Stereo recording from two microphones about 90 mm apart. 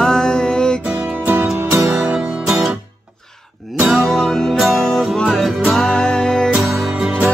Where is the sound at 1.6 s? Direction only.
30° right (ahead or behind).